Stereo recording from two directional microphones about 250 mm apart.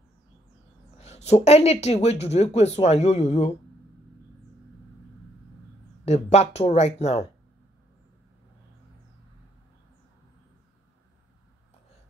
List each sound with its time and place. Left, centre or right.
0.9 s speech: left
6.0 s speech: left